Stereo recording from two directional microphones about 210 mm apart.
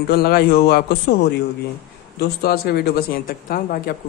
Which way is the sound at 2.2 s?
50° left (ahead or behind).